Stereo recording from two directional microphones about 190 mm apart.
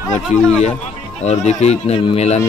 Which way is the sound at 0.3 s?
35° left (ahead or behind).